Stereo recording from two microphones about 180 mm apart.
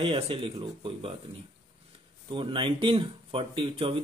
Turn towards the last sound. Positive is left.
turn(degrees=-30)  # may be behind; listen again after turning